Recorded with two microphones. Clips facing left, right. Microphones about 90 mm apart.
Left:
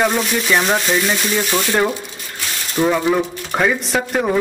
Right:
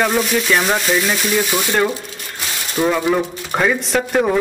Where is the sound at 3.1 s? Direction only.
Centre (ahead or behind).